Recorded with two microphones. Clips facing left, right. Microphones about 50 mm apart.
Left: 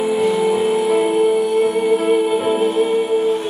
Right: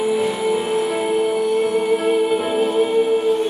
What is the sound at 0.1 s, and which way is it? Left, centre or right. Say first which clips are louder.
Music: left 3 dB; centre.